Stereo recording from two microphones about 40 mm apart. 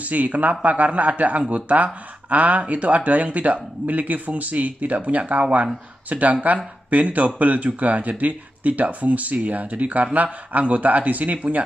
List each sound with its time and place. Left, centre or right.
0.0 s speech: right